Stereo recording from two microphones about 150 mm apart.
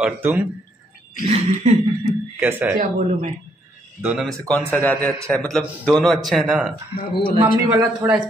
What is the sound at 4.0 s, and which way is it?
A man's voice, 5° right (ahead or behind).